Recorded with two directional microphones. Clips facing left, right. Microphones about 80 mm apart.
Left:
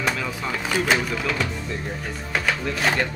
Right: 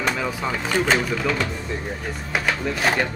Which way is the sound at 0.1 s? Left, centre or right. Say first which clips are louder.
Right 2 dB; centre.